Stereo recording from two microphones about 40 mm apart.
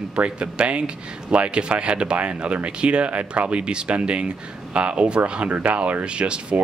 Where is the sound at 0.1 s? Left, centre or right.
Right.